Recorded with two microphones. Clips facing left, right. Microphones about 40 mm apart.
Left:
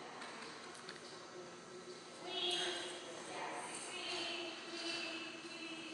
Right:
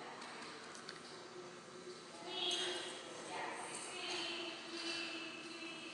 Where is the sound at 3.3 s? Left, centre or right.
Centre.